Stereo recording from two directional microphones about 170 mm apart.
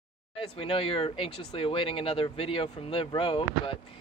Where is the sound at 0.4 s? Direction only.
35° left (ahead or behind).